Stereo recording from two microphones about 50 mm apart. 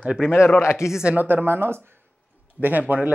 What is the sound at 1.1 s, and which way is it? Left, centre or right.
Speech, right.